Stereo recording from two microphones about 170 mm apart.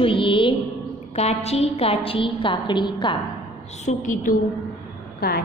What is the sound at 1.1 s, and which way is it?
A woman's voice, 40° left (ahead or behind).